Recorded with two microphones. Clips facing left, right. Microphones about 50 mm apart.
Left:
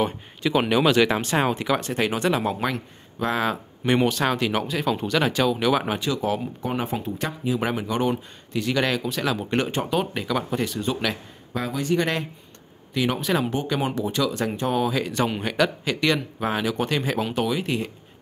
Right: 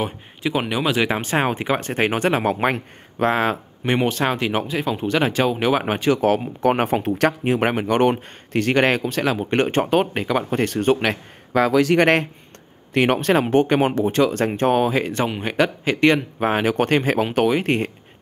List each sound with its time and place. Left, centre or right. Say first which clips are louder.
0.0 s speech: even; centre
1.2 s speech: right 2 dB; right
10.6 s speech: right 7 dB; right
11.5 s a man's voice: right 8 dB; right